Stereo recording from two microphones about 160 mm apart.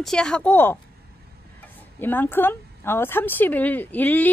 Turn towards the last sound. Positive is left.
turn(degrees=10)  # may be behind; listen again after turning